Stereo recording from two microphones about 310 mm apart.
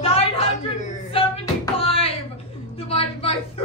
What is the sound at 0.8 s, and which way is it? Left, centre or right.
Knock, centre.